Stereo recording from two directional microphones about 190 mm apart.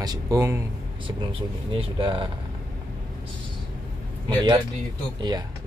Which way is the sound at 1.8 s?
25° right (ahead or behind).